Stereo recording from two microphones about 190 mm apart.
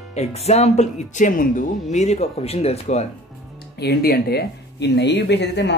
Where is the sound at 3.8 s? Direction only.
55° left (ahead or behind).